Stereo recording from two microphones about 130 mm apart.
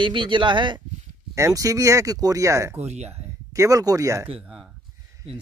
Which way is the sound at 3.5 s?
25° right (ahead or behind).